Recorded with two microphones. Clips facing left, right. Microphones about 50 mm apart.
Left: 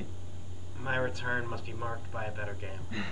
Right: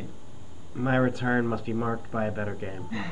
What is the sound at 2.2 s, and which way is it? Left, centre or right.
Speech, right.